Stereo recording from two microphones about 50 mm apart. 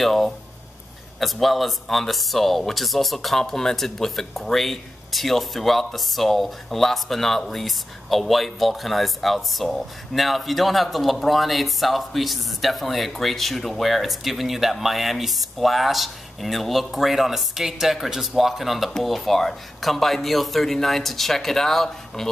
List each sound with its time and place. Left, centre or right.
0.0 s speech: centre